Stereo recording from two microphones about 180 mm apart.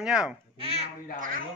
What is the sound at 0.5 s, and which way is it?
Babbling, 35° right (ahead or behind).